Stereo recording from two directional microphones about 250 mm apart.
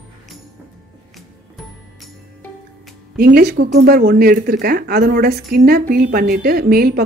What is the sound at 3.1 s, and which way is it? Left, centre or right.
Speech, right.